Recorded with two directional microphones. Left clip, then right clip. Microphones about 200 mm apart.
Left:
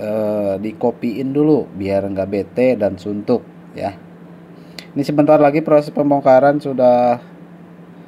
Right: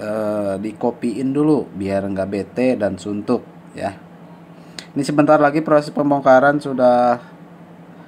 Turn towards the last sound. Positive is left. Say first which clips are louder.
# left 1 dB
turn(degrees=20)  # may be behind; listen again after turning